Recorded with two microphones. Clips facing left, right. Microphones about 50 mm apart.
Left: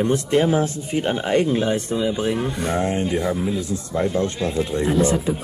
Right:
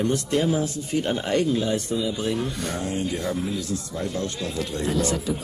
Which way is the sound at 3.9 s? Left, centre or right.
Left.